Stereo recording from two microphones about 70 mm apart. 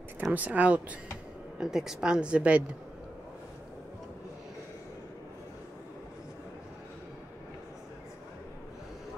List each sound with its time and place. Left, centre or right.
0.2 s speech: right
1.6 s speech: centre